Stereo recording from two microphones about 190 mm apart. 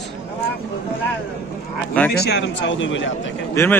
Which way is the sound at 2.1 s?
60° left (ahead or behind).